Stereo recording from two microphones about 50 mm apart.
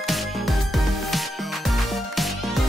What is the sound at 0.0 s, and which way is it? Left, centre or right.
Music, centre.